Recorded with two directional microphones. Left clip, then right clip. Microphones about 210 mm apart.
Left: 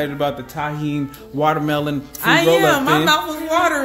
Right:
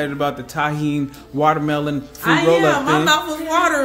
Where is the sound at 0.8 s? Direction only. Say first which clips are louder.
Right 2 dB; 5° right (ahead or behind).